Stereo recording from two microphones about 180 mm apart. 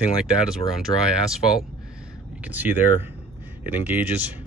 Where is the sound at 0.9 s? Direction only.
25° left (ahead or behind).